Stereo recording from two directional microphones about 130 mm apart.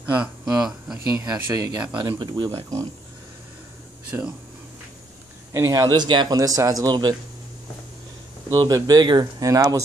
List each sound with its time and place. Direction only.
0.0 s speech: 10° right (ahead or behind)
0.9 s speech: 25° right (ahead or behind)
2.0 s speech: 35° right (ahead or behind)
4.1 s speech: 15° right (ahead or behind)
5.5 s speech: 25° right (ahead or behind)
8.5 s speech: 30° right (ahead or behind)